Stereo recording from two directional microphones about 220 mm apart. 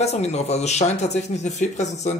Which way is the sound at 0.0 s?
30° left (ahead or behind).